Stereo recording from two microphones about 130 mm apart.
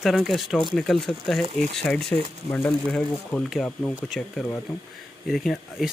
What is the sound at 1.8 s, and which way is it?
Speech, 5° left (ahead or behind).